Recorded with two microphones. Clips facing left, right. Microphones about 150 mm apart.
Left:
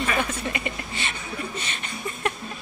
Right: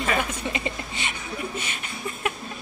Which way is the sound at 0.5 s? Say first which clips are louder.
Right 1 dB; 20° right (ahead or behind).